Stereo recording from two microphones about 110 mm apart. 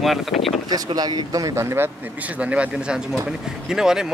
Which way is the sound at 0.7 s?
40° right (ahead or behind).